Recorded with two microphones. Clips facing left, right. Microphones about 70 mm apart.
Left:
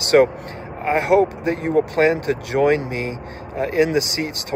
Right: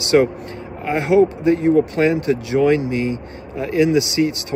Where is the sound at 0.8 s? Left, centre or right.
Left.